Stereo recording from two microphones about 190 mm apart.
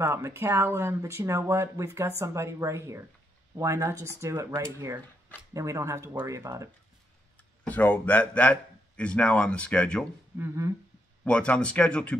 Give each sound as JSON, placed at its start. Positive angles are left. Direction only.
{"t": 0.0, "sound": "speech", "side_deg": -15}
{"t": 7.6, "sound": "a man's voice", "side_deg": 10}
{"t": 10.3, "sound": "speech", "side_deg": -15}
{"t": 11.2, "sound": "speech", "side_deg": 5}